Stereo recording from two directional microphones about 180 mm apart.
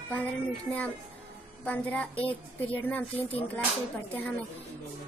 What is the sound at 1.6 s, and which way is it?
A woman's voice, 10° left (ahead or behind).